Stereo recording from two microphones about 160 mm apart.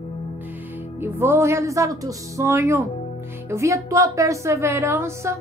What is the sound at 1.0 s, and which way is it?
A woman's voice, 15° right (ahead or behind).